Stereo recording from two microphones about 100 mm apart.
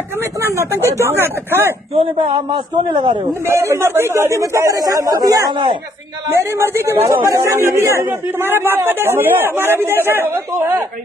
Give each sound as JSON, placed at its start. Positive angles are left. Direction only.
{"t": 0.4, "sound": "a man's voice", "side_deg": -25}
{"t": 2.0, "sound": "a man's voice", "side_deg": -60}
{"t": 3.4, "sound": "speech", "side_deg": -25}
{"t": 6.3, "sound": "a man's voice", "side_deg": -25}